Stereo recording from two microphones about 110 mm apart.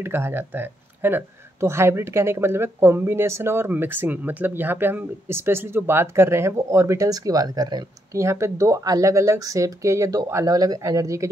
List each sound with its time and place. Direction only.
0.0 s speech: 20° right (ahead or behind); by 8.2 s 40° right (ahead or behind)
8.2 s speech: 25° right (ahead or behind)